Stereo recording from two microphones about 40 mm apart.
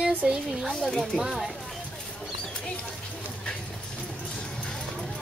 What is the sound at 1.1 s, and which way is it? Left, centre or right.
Speech, centre.